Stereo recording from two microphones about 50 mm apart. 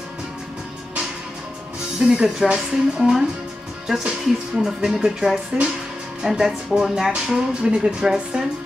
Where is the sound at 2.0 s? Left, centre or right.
Centre.